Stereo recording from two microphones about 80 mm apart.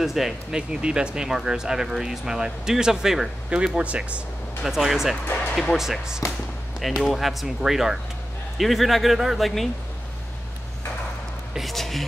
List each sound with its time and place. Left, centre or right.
0.0 s speech: centre
4.6 s speech: centre
5.3 s speech: left
5.6 s speech: centre
11.5 s speech: centre